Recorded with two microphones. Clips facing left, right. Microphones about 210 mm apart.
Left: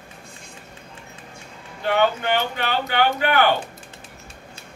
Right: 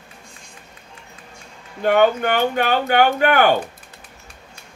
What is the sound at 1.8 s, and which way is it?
Speech, 50° right (ahead or behind).